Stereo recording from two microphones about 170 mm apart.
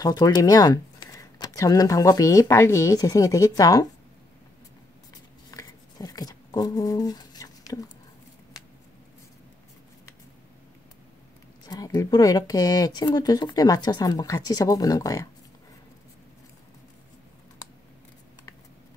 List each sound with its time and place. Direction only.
0.0 s speech: 20° left (ahead or behind)
5.5 s a sound: 20° left (ahead or behind)
11.6 s speech: 25° left (ahead or behind)